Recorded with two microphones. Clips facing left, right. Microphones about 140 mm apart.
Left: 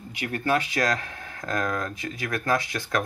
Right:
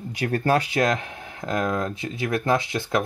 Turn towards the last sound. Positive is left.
turn(degrees=-20)  # may be behind; listen again after turning